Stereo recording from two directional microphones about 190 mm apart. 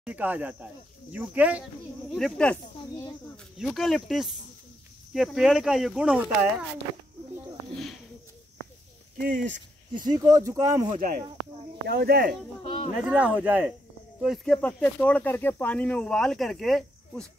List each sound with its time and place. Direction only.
0.0 s speech: 10° right (ahead or behind)
2.1 s speech: 5° left (ahead or behind)
9.2 s speech: 45° right (ahead or behind)
10.0 s speech: 15° right (ahead or behind)
10.9 s speech: 45° right (ahead or behind)
11.9 s speech: 60° right (ahead or behind)
12.6 s a sound: 30° left (ahead or behind)
13.0 s speech: 5° right (ahead or behind)
14.2 s speech: centre (ahead or behind)